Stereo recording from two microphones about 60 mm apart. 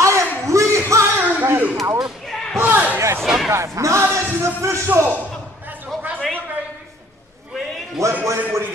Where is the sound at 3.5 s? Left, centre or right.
Right.